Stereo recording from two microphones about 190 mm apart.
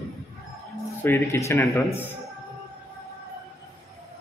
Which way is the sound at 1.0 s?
10° left (ahead or behind).